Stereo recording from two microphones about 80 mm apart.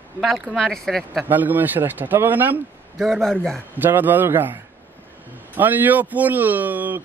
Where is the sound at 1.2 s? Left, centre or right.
Right.